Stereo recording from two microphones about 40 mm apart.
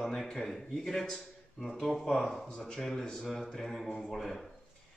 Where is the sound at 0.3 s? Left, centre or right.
Centre.